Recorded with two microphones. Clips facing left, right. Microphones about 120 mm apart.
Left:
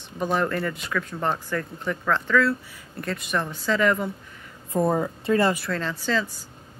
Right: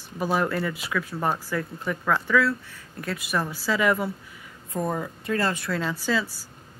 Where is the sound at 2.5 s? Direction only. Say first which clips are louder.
Left 2 dB; 5° left (ahead or behind).